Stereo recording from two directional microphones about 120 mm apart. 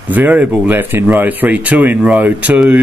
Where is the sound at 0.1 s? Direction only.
15° right (ahead or behind).